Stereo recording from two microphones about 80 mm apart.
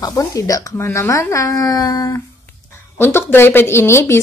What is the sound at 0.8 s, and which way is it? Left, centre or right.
Speech, left.